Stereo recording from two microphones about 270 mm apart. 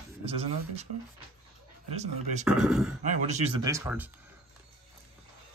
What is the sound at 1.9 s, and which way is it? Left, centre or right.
Speech, right.